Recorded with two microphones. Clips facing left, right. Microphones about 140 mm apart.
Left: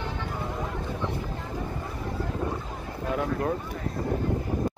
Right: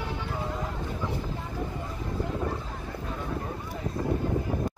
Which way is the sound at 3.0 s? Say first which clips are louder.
Left 8 dB; 70° left (ahead or behind).